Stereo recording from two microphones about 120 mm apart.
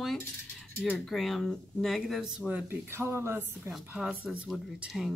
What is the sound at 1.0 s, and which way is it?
Speech, centre (ahead or behind).